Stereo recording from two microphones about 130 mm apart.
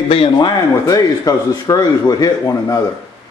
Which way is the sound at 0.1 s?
45° left (ahead or behind).